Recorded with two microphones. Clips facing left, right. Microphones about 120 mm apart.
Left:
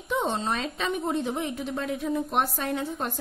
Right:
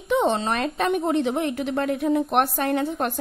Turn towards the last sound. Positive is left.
turn(degrees=-65)  # may be behind; listen again after turning